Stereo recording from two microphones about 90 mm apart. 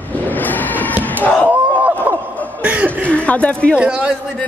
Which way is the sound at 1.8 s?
20° right (ahead or behind).